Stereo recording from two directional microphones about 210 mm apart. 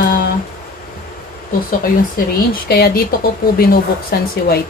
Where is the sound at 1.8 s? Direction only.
45° left (ahead or behind).